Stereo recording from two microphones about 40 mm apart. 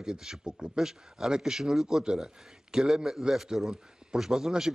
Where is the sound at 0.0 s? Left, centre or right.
Centre.